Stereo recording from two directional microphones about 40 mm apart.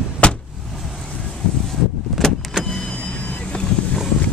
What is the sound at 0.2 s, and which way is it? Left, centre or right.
Vehicle, left.